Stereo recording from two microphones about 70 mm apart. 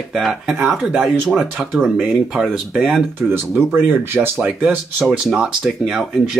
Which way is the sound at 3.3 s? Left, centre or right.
Right.